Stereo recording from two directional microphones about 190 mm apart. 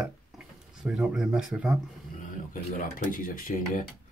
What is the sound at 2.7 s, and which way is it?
Speech, 45° left (ahead or behind).